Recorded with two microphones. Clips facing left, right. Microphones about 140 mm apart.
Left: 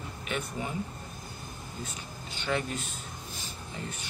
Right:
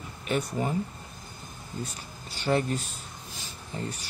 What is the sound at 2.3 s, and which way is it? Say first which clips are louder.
Speech: right 5 dB; 35° right (ahead or behind).